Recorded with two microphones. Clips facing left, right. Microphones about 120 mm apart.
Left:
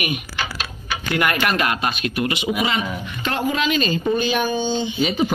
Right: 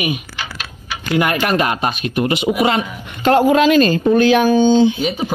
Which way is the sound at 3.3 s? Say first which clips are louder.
Right 10 dB; 60° right (ahead or behind).